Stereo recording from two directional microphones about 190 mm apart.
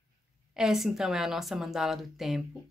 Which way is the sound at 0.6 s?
Centre (ahead or behind).